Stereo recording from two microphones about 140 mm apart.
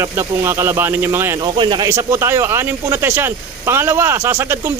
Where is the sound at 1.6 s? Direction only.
30° right (ahead or behind).